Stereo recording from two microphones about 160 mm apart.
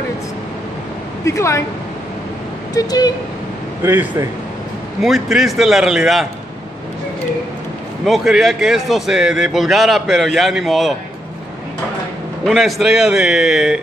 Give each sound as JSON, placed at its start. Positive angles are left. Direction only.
{"t": 1.2, "sound": "speech", "side_deg": 20}
{"t": 2.7, "sound": "speech", "side_deg": 25}
{"t": 3.8, "sound": "speech", "side_deg": -15}
{"t": 5.0, "sound": "a man's voice", "side_deg": 0}
{"t": 8.0, "sound": "a man's voice", "side_deg": 0}
{"t": 12.4, "sound": "a man's voice", "side_deg": 0}